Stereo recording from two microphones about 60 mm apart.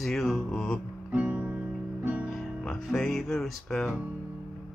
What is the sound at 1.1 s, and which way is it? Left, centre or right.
Music, right.